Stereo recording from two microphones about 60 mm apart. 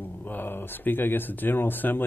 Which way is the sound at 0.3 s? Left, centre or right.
Left.